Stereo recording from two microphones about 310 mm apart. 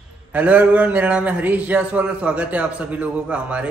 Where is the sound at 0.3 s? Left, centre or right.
Centre.